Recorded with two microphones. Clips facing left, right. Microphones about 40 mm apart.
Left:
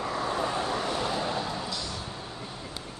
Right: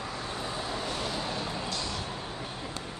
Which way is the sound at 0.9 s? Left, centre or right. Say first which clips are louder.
Left 4 dB; left.